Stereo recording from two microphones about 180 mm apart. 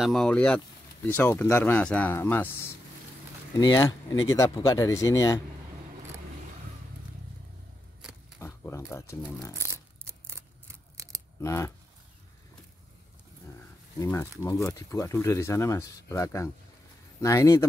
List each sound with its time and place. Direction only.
0.0 s speech: centre (ahead or behind)
3.5 s speech: 20° left (ahead or behind)
8.4 s a sound: 15° left (ahead or behind)
9.6 s scissors: 15° right (ahead or behind)
11.4 s speech: 15° left (ahead or behind)
13.9 s speech: 15° left (ahead or behind)